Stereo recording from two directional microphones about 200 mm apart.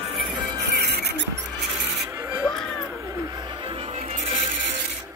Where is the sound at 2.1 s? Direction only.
15° right (ahead or behind).